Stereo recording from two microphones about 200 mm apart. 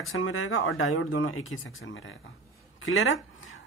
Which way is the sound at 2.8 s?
85° left.